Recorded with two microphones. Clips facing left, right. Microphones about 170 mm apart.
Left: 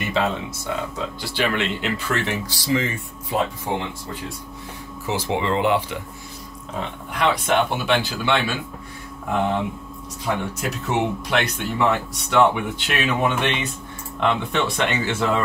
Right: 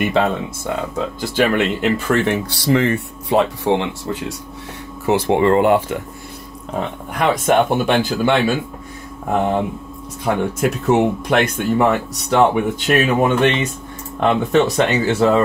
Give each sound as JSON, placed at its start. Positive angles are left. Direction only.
{"t": 1.2, "sound": "speech", "side_deg": -45}
{"t": 5.0, "sound": "speech", "side_deg": -60}
{"t": 7.2, "sound": "speech", "side_deg": -45}